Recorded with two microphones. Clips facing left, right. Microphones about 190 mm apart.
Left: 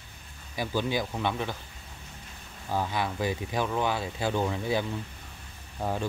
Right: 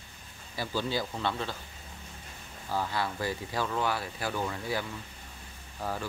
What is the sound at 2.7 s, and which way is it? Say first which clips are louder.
Speech: left 2 dB; 15° left (ahead or behind).